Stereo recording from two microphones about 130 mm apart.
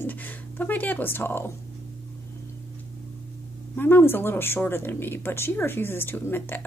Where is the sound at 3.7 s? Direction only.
15° left (ahead or behind).